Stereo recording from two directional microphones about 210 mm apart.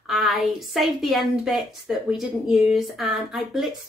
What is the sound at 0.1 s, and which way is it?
A woman's voice, centre (ahead or behind).